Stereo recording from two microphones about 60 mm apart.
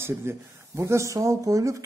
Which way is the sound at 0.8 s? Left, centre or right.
Right.